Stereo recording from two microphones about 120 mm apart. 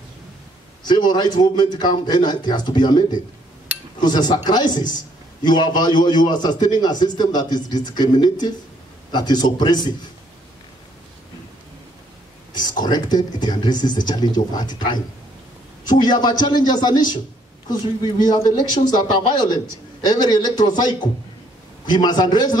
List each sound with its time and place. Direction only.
0.8 s a man's voice: 40° left (ahead or behind)
12.5 s a man's voice: 35° left (ahead or behind)